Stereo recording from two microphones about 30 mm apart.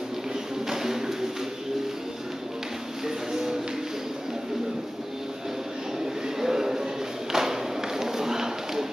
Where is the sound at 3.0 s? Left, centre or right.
Centre.